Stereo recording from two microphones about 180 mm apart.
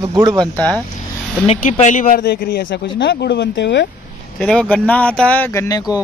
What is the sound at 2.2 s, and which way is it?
Speech, 60° left (ahead or behind).